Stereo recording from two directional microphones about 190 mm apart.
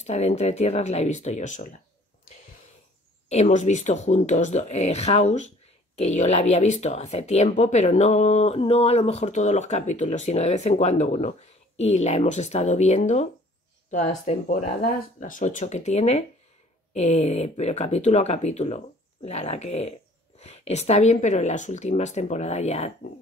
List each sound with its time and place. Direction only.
0.0 s speech: 35° left (ahead or behind)
3.3 s speech: 35° left (ahead or behind)